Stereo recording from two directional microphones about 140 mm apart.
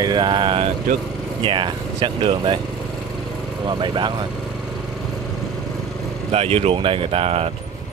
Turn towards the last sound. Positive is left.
turn(degrees=-45)  # may be behind; listen again after turning